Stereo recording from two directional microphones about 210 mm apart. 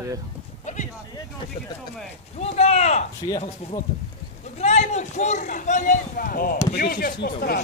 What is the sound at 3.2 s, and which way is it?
Speech, 20° left (ahead or behind).